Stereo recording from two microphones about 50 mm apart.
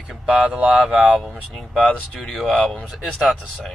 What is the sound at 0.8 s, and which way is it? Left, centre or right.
Speech, centre.